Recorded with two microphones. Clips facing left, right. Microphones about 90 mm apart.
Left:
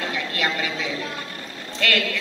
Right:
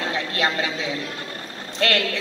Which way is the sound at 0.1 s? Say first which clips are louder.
Right 2 dB; 30° right (ahead or behind).